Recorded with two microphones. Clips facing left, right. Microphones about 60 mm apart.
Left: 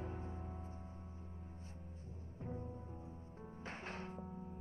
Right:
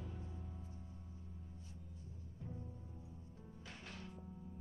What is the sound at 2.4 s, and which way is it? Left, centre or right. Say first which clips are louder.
Music: left 5 dB; left.